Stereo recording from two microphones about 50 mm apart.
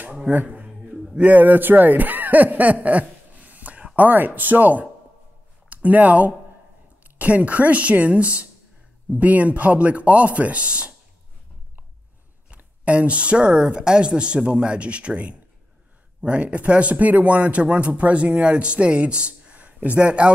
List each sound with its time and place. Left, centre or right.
0.3 s speech: right
12.5 s speech: right